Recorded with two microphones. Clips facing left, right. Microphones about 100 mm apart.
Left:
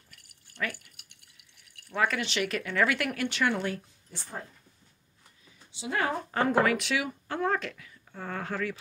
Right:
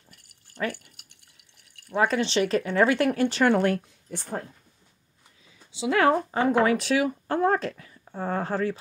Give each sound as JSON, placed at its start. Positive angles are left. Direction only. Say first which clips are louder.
{"t": 0.1, "sound": "a sound", "louder": "right 6 dB", "side_deg": -30}
{"t": 1.9, "sound": "speech", "louder": "right 5 dB", "side_deg": -30}
{"t": 3.5, "sound": "speech", "louder": "right 9 dB", "side_deg": -55}
{"t": 5.7, "sound": "speech", "louder": "right 9 dB", "side_deg": -90}
{"t": 6.6, "sound": "speech", "louder": "right 4 dB", "side_deg": -30}
{"t": 6.9, "sound": "speech", "louder": "right 7 dB", "side_deg": -40}